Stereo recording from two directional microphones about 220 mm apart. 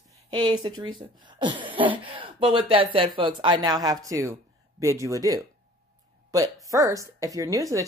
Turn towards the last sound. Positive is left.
turn(degrees=-15)  # may be behind; listen again after turning